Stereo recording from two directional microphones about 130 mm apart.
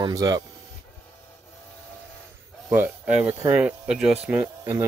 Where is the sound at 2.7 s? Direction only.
10° right (ahead or behind).